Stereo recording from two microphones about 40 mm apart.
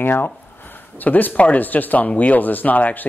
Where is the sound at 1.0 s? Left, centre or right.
Left.